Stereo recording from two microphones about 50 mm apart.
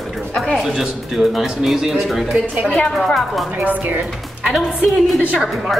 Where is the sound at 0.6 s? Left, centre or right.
Centre.